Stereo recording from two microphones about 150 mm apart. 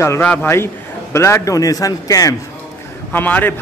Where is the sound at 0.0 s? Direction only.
15° left (ahead or behind).